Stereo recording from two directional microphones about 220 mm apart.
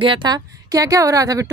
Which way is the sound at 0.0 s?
20° right (ahead or behind).